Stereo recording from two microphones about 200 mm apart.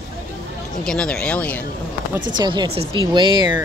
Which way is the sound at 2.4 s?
20° right (ahead or behind).